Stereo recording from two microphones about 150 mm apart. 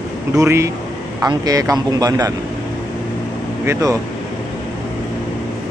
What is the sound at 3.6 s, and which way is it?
Speech, 20° right (ahead or behind).